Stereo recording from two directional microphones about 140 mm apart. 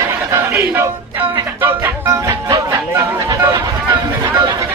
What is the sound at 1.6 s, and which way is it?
Music, 15° right (ahead or behind).